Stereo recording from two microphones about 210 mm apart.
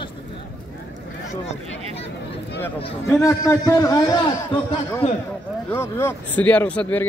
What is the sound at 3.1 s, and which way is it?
Speech, 15° left (ahead or behind).